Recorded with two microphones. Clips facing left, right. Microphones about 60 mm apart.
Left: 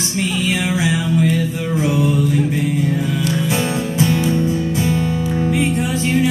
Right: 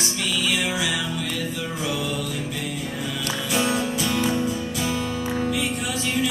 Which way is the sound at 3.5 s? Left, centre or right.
Left.